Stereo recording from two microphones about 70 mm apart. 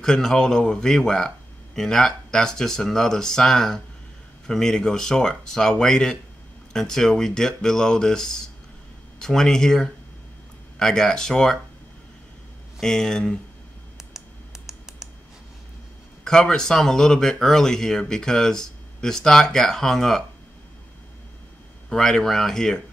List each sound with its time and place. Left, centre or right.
0.0 s speech: centre
12.8 s speech: centre
14.7 s computer keyboard: centre
16.3 s speech: centre
21.8 s speech: centre